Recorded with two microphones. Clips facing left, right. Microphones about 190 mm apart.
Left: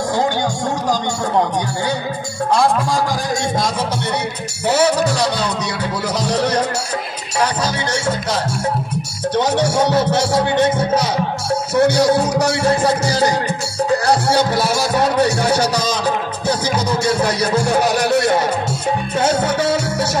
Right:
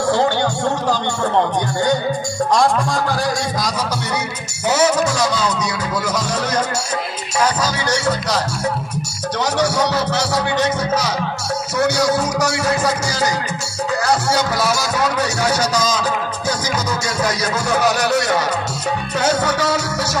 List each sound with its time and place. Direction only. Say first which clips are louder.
0.1 s speech: right 2 dB; 15° left (ahead or behind)
2.5 s music: left 1 dB; 5° left (ahead or behind)
4.7 s music: left 1 dB; 35° left (ahead or behind)
9.4 s music: left 2 dB; 25° left (ahead or behind)
11.7 s music: left 4 dB; 30° left (ahead or behind)
15.6 s speech: even; 60° left (ahead or behind)
16.0 s music: left 2 dB; 30° left (ahead or behind)